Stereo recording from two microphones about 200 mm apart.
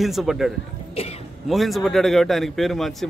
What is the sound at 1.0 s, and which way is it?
Speech, 30° left (ahead or behind).